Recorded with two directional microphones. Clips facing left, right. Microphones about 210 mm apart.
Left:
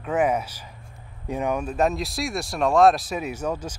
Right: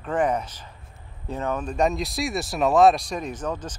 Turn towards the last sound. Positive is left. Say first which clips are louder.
# left 2 dB
turn(degrees=10)  # may be behind; listen again after turning